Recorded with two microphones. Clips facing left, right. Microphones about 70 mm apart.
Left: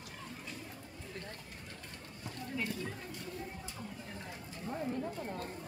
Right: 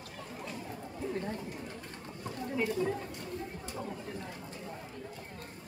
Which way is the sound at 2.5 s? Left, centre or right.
Centre.